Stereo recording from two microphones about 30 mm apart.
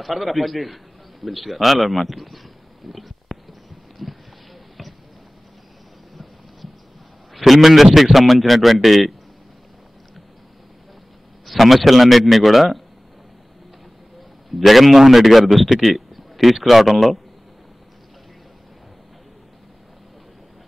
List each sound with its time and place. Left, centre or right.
0.0 s a man's voice: centre
2.9 s a sound: centre
7.3 s a man's voice: centre
11.4 s a man's voice: centre
14.6 s a man's voice: centre